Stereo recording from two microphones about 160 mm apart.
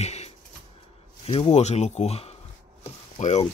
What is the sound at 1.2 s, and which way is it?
Speech, 40° left (ahead or behind).